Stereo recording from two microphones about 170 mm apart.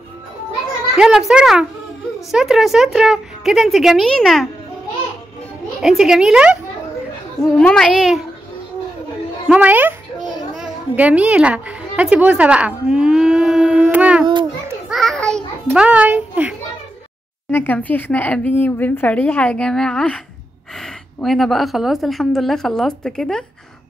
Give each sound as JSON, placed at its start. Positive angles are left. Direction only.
{"t": 0.9, "sound": "a woman's voice", "side_deg": 0}
{"t": 5.8, "sound": "a woman's voice", "side_deg": 0}
{"t": 9.5, "sound": "speech", "side_deg": -10}
{"t": 10.5, "sound": "a sound", "side_deg": -5}
{"t": 14.2, "sound": "children playing", "side_deg": -25}
{"t": 14.9, "sound": "a sound", "side_deg": 0}
{"t": 17.5, "sound": "a woman's voice", "side_deg": 10}